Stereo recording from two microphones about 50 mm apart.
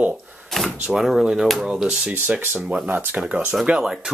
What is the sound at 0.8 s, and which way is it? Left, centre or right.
Speech, centre.